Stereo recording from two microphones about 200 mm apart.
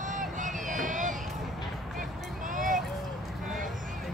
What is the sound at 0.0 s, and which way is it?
Run, 40° right (ahead or behind).